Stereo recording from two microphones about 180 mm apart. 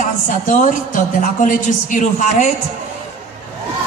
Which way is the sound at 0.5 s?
45° left (ahead or behind).